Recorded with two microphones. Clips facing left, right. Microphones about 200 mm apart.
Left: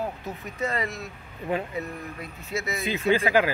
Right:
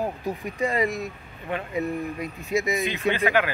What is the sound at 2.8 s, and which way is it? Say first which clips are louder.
Speech: left 1 dB; 35° left (ahead or behind).